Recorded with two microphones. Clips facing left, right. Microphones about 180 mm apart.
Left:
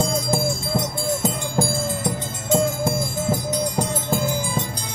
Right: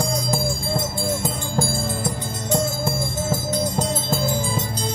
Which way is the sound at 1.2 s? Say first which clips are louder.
Left 2 dB; 15° left (ahead or behind).